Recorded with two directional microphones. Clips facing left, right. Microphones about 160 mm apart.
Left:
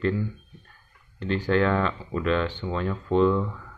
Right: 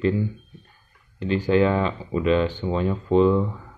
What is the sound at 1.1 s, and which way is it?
Speech, 10° right (ahead or behind).